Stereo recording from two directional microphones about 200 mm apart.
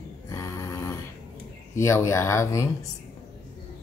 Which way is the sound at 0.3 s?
15° left (ahead or behind).